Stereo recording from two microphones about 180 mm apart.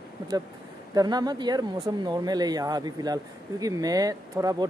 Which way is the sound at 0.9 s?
20° right (ahead or behind).